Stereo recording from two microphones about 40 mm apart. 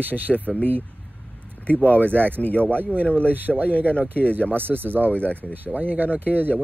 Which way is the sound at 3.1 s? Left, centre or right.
Right.